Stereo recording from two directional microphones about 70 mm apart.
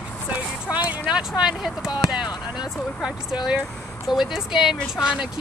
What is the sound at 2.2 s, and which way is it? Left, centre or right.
Speech, left.